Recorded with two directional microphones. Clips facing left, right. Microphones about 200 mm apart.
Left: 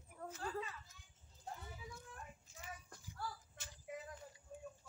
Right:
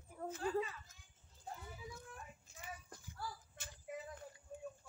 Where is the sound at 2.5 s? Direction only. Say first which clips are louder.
Even; 55° right (ahead or behind).